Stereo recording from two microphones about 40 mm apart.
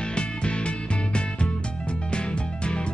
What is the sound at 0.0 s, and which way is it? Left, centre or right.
Music, left.